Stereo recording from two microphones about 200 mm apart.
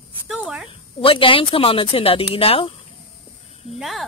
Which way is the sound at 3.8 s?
Centre (ahead or behind).